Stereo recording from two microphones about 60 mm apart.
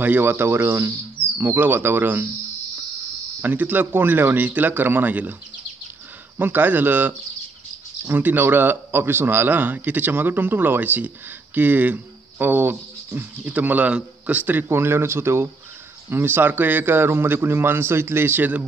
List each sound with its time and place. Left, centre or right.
0.0 s speech: right
3.4 s speech: right
6.3 s a man's voice: right
14.7 s speech: right